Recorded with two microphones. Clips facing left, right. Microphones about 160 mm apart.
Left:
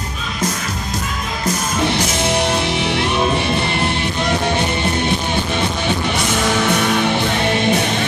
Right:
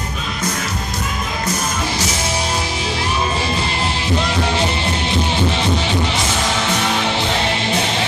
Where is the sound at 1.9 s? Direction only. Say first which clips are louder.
Left 4 dB; 65° left (ahead or behind).